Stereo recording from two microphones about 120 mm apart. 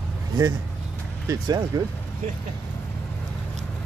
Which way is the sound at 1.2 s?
25° right (ahead or behind).